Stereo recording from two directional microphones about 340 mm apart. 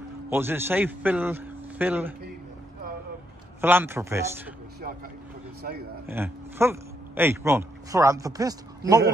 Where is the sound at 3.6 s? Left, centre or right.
Centre.